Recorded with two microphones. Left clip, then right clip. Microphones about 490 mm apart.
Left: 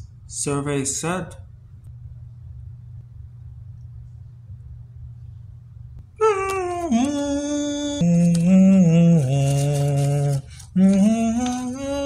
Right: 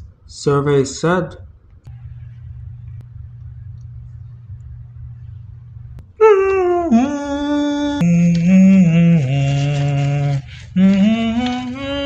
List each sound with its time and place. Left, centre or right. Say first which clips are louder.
0.3 s speech: right 9 dB; left
6.1 s humming: right 9 dB; left
8.1 s mantra: right 3 dB; left